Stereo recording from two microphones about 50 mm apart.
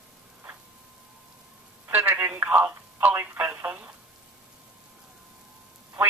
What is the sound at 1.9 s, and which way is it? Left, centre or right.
Telephone, right.